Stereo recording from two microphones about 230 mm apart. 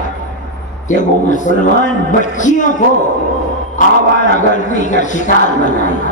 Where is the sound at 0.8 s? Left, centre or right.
Left.